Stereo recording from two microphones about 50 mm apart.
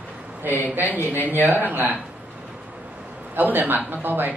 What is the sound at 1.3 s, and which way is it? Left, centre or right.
Speech, right.